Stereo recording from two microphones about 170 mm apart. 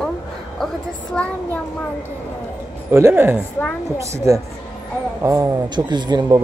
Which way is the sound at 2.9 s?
15° right (ahead or behind).